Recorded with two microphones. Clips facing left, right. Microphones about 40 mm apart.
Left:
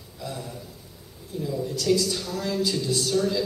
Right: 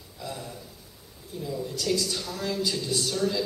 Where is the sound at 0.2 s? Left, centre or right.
Centre.